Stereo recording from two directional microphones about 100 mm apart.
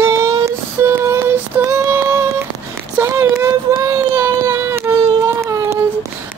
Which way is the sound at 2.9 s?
30° right (ahead or behind).